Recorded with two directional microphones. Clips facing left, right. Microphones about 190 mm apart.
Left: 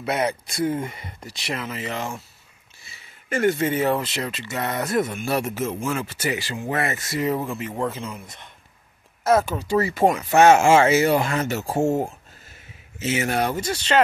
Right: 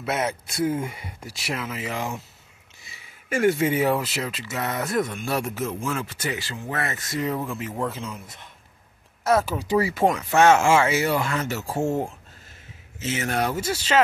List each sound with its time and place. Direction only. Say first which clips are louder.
0.0 s speech: left 2 dB; centre (ahead or behind)
9.6 s speech: left 1 dB; 10° right (ahead or behind)
10.3 s speech: left 3 dB; 15° left (ahead or behind)
10.7 s speech: left 4 dB; 40° left (ahead or behind)
11.1 s speech: left 4 dB; 25° left (ahead or behind)
13.0 s speech: left 3 dB; 10° left (ahead or behind)
13.4 s speech: left 1 dB; centre (ahead or behind)